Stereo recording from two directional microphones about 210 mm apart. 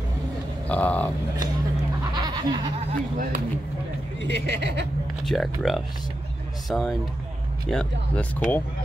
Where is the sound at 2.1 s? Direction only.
20° right (ahead or behind).